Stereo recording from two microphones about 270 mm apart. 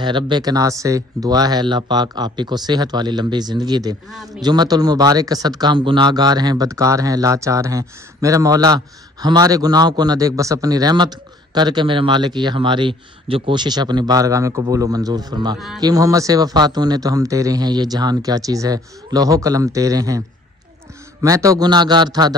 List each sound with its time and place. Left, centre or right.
0.0 s speech: centre